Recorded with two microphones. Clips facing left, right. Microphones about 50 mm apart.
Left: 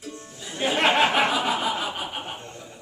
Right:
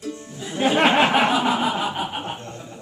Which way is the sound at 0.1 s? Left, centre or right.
Centre.